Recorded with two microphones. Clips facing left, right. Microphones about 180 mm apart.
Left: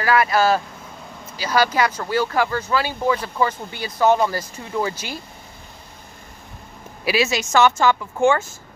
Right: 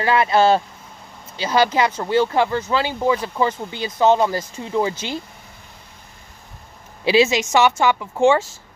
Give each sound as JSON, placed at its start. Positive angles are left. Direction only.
{"t": 0.0, "sound": "speech", "side_deg": -25}
{"t": 7.1, "sound": "speech", "side_deg": -25}